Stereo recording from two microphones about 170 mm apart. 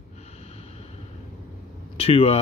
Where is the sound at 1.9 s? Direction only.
35° left (ahead or behind).